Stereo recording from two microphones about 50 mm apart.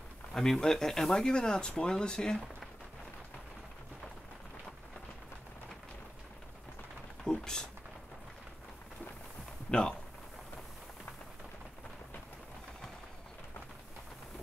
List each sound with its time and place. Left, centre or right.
0.3 s speech: centre
7.2 s a sound: centre
9.7 s speech: centre